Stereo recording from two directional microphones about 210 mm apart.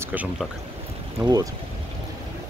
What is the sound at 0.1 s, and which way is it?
Speech, 5° right (ahead or behind).